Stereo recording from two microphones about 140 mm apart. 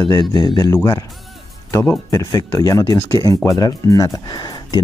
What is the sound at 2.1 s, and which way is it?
Speech, 25° left (ahead or behind).